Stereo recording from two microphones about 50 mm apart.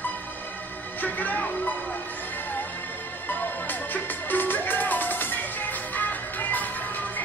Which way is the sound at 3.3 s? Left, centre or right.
Left.